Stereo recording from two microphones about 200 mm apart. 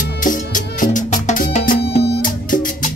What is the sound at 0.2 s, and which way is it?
Music, 40° left (ahead or behind).